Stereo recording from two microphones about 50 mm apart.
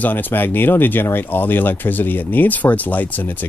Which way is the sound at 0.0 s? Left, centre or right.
Left.